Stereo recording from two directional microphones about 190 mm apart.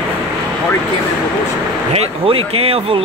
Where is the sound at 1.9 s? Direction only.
30° right (ahead or behind).